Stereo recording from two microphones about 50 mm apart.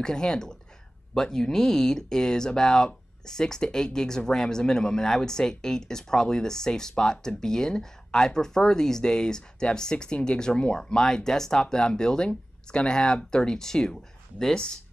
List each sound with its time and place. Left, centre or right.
0.0 s speech: centre